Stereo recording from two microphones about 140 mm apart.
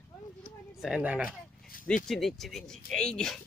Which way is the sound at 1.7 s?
80° left.